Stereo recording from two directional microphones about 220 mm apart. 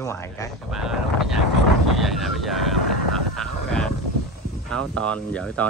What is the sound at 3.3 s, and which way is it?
Vehicle, centre (ahead or behind).